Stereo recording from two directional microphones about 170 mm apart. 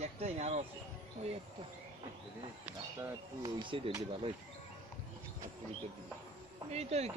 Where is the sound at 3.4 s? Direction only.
25° right (ahead or behind).